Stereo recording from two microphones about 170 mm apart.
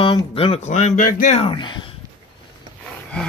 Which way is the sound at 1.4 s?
30° left (ahead or behind).